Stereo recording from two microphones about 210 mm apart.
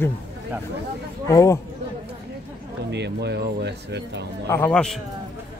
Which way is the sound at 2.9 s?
55° right (ahead or behind).